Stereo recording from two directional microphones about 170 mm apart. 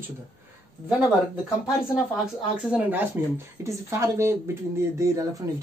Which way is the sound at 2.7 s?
10° right (ahead or behind).